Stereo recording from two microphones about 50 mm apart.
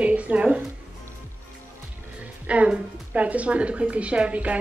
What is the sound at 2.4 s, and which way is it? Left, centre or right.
A woman's voice, right.